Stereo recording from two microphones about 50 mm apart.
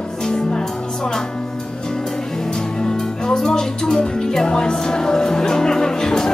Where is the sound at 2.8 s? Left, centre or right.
Centre.